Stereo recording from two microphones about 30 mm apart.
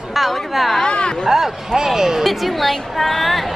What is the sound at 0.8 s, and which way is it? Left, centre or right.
Speech, left.